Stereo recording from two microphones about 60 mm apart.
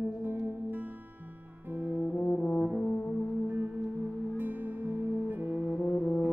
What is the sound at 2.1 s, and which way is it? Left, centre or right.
Brass instrument, left.